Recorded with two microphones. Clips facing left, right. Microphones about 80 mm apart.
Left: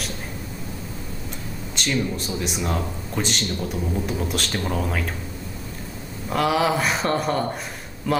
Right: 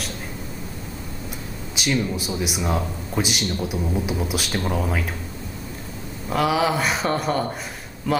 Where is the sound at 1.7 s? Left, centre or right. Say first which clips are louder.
Right 1 dB; centre.